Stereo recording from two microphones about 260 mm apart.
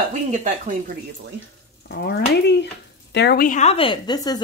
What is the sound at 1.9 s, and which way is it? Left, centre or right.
A woman's voice, left.